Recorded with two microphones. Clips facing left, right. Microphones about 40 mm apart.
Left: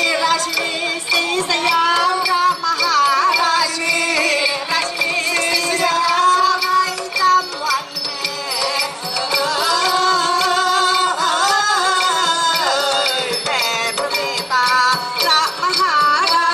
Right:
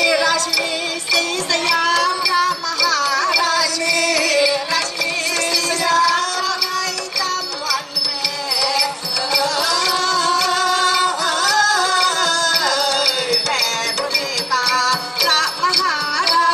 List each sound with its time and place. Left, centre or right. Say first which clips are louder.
0.0 s music: even; centre
9.3 s music: left 1 dB; centre